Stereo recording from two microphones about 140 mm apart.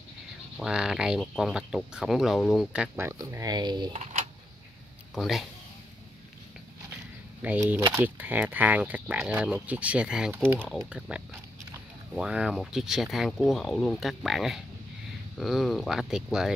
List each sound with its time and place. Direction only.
0.6 s speech: 5° right (ahead or behind)
3.0 s speech: 20° right (ahead or behind)
3.9 s speech: 55° right (ahead or behind)
5.1 s speech: centre (ahead or behind)
7.4 s speech: 10° right (ahead or behind)